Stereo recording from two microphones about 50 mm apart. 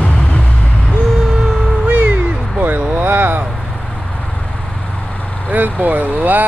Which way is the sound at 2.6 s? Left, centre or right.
Right.